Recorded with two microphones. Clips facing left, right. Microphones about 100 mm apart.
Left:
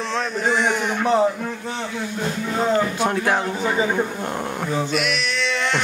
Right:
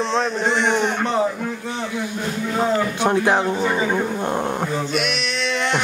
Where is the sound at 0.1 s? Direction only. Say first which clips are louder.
Right 2 dB; 25° right (ahead or behind).